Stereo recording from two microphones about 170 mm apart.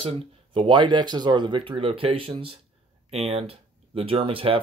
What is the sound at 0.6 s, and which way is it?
Speech, 30° right (ahead or behind).